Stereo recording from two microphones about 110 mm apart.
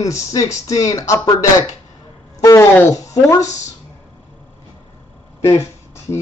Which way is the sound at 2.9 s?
30° left (ahead or behind).